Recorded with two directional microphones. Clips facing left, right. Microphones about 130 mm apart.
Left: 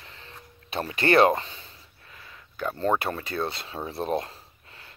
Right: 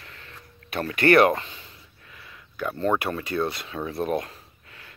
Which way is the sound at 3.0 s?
30° left (ahead or behind).